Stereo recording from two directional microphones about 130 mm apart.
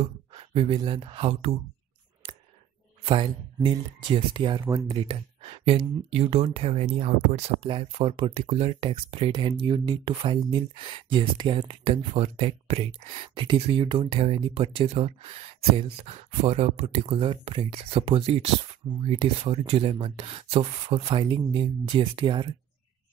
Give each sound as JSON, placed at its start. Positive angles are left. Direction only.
{"t": 0.0, "sound": "a sound", "side_deg": -45}
{"t": 0.8, "sound": "speech", "side_deg": -45}
{"t": 3.5, "sound": "speech", "side_deg": -30}